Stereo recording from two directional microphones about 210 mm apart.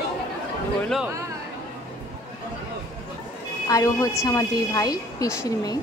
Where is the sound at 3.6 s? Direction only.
15° left (ahead or behind).